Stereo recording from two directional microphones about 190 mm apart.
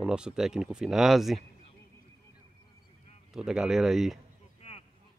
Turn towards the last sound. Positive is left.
turn(degrees=30)  # may be behind; listen again after turning